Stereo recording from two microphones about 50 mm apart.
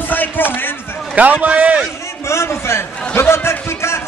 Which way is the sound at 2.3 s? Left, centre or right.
Left.